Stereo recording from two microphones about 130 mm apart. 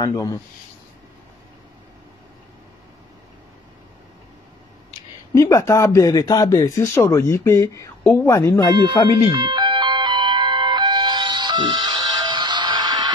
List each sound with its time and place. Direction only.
0.0 s speech: 30° left (ahead or behind)
5.3 s speech: 25° left (ahead or behind)
9.3 s music: 35° right (ahead or behind)